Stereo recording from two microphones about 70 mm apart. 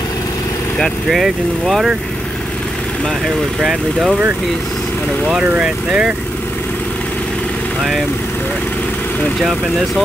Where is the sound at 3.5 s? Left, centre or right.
Centre.